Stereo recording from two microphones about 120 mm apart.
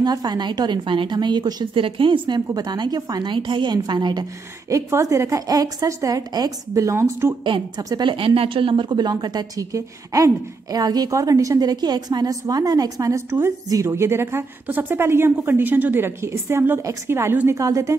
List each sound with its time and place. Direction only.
0.0 s a woman's voice: 35° right (ahead or behind)
7.4 s a woman's voice: 40° right (ahead or behind); by 17.9 s 25° right (ahead or behind)